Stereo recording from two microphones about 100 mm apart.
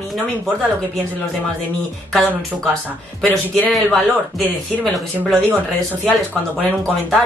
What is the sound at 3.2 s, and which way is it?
Speech, 15° left (ahead or behind).